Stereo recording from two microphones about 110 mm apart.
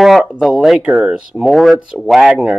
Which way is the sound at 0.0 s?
Centre (ahead or behind).